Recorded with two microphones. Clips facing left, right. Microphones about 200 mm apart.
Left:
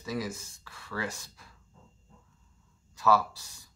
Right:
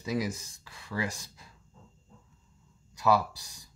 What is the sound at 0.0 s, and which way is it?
Speech, 15° right (ahead or behind).